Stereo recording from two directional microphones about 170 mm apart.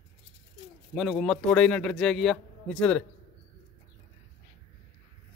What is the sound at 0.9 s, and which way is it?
A man's voice, centre (ahead or behind).